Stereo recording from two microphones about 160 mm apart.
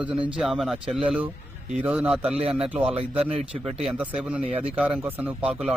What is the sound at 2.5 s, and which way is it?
Speech, 10° right (ahead or behind).